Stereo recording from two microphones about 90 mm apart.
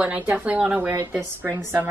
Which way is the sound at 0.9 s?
30° right (ahead or behind).